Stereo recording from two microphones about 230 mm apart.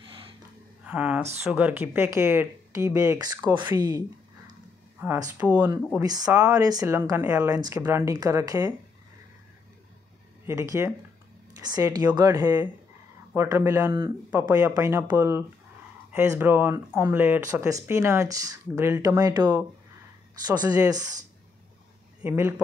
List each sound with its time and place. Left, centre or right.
0.0 s gasp: right
0.8 s speech: centre
5.0 s speech: centre
10.4 s speech: centre
20.6 s speech: centre
22.2 s speech: centre